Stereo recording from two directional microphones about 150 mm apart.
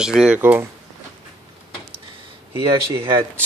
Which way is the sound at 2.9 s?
35° right (ahead or behind).